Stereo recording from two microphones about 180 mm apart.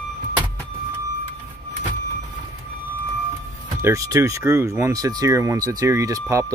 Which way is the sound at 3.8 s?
15° right (ahead or behind).